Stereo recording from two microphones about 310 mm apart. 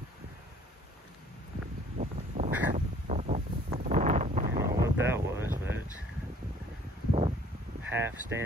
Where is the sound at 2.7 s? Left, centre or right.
Right.